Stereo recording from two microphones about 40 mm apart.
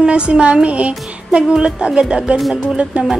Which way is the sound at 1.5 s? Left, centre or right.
Right.